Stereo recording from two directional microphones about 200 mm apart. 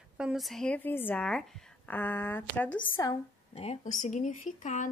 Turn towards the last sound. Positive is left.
turn(degrees=40)  # may be behind; listen again after turning